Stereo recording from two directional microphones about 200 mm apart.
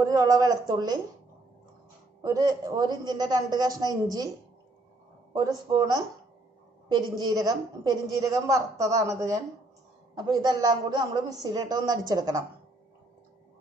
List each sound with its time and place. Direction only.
0.0 s a woman's voice: 15° right (ahead or behind)
2.2 s a woman's voice: 20° right (ahead or behind)
5.3 s a woman's voice: 20° right (ahead or behind)
10.1 s a woman's voice: 20° right (ahead or behind)